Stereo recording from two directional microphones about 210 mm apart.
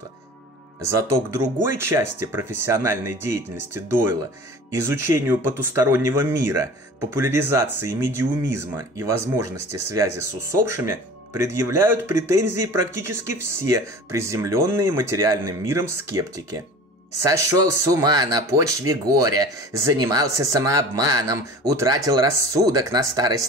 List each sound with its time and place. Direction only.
0.7 s speech: 15° right (ahead or behind)